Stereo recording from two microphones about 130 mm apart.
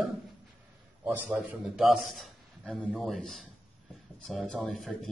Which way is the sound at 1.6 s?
Centre (ahead or behind).